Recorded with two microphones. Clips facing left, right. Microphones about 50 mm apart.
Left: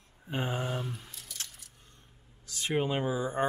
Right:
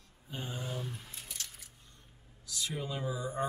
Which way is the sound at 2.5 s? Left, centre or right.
Left.